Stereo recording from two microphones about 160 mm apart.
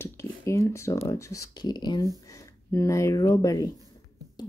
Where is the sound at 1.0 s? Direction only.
20° left (ahead or behind).